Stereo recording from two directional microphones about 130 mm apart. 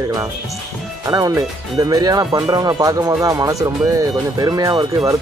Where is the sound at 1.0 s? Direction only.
25° right (ahead or behind).